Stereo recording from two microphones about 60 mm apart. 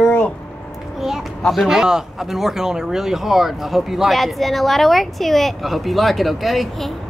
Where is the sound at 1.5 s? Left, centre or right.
Centre.